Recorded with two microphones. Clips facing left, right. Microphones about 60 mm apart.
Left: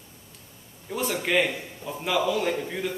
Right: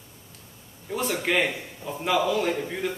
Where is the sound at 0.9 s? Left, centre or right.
Centre.